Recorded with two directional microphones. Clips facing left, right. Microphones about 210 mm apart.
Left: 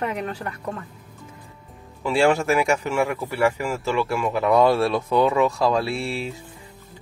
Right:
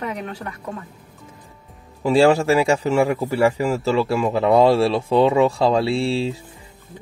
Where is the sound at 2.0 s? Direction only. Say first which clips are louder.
Right 4 dB; 40° right (ahead or behind).